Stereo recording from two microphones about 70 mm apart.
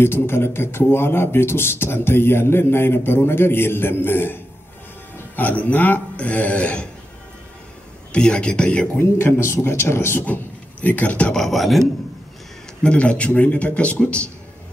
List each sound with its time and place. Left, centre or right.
0.0 s speech: left; by 6.9 s centre
8.1 s a man's voice: centre
9.0 s speech: left
10.2 s speech: left
11.3 s speech: centre
12.8 s a man's voice: centre